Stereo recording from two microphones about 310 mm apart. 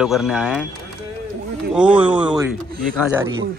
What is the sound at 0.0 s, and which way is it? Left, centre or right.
Speech, centre.